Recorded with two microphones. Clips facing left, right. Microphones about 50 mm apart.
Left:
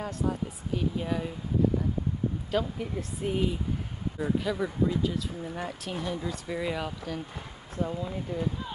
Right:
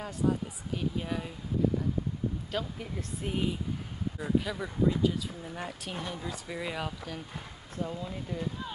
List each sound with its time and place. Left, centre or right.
0.0 s speech: centre
2.5 s speech: centre